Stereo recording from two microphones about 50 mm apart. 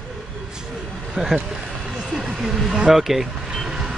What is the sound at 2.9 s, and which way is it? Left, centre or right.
Vehicle, centre.